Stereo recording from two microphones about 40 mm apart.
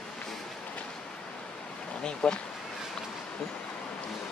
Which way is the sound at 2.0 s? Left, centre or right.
Left.